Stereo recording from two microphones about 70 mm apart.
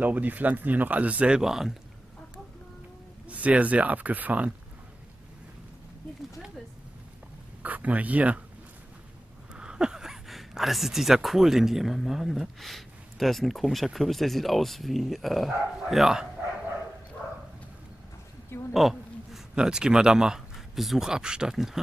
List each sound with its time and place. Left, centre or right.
0.0 s speech: right; by 1.8 s centre
3.3 s speech: centre
7.6 s speech: right
9.5 s speech: centre
18.7 s a sound: centre
19.5 s speech: centre